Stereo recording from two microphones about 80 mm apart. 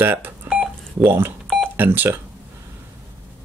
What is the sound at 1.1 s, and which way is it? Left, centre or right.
Speech, right.